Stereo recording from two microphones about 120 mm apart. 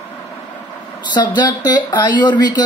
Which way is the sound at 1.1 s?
35° left (ahead or behind).